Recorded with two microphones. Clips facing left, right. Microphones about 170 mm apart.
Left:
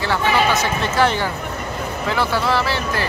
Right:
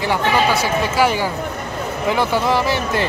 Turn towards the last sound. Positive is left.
turn(degrees=-20)  # may be behind; listen again after turning